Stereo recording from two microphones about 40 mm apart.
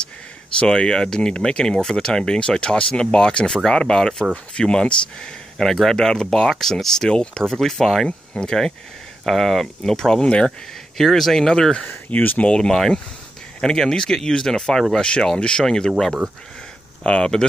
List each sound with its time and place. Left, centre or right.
0.5 s speech: left
7.4 s speech: centre
11.4 s speech: centre
12.1 s speech: left
12.4 s speech: centre
17.0 s speech: left